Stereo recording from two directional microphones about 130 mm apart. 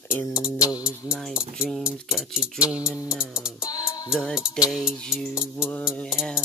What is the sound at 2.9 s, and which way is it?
Music, 20° left (ahead or behind).